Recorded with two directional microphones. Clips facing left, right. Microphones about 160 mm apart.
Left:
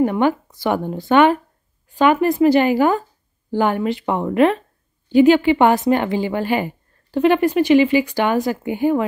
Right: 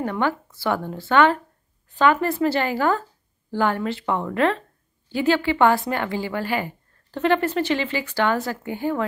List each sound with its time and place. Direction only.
0.0 s a woman's voice: 15° left (ahead or behind)